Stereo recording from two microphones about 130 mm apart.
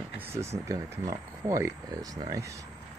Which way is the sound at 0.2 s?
20° right (ahead or behind).